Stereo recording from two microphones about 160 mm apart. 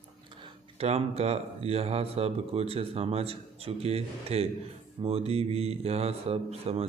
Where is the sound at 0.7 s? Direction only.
40° right (ahead or behind).